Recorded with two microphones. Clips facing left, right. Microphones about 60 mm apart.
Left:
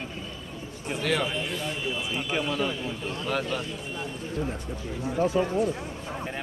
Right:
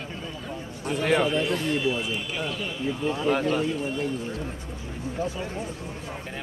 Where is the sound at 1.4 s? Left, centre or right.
Right.